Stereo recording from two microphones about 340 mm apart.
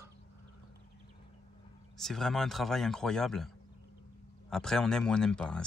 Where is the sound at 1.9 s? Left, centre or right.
Centre.